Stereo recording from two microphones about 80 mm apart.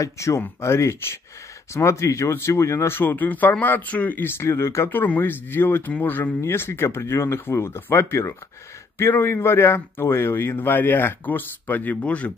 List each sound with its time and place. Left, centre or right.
0.0 s speech: left; by 12.3 s centre